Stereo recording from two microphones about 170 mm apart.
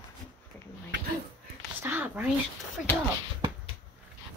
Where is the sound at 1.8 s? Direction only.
10° right (ahead or behind).